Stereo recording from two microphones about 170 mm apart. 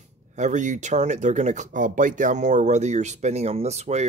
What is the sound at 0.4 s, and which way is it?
Speech, 45° right (ahead or behind).